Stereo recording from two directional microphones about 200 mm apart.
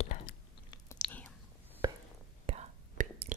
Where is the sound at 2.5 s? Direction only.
30° right (ahead or behind).